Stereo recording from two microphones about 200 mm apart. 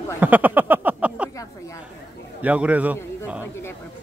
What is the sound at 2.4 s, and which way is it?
A man's voice, 5° right (ahead or behind).